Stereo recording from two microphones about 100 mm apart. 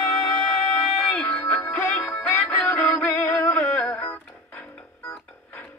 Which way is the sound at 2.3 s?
30° left (ahead or behind).